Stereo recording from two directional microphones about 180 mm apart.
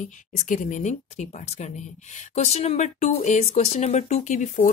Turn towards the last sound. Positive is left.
turn(degrees=45)  # may be behind; listen again after turning